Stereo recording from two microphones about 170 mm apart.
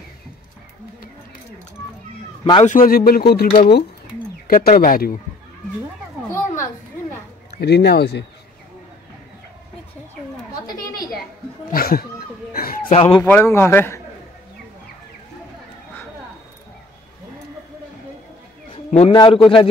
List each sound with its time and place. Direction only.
2.6 s speech: 55° left (ahead or behind)
7.6 s speech: 75° left (ahead or behind)
10.5 s chatter: 25° left (ahead or behind)
11.7 s a sound: 60° left (ahead or behind)
12.9 s speech: 30° left (ahead or behind)
13.2 s a man's voice: 15° left (ahead or behind)
18.7 s a sound: 35° left (ahead or behind)
19.1 s a man's voice: 25° left (ahead or behind)